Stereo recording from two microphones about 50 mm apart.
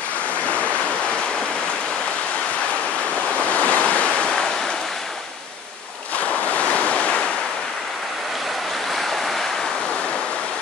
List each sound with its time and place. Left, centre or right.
3.5 s waves: left
6.1 s waves: left